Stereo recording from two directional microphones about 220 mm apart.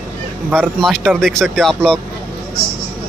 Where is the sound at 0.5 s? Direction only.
Centre (ahead or behind).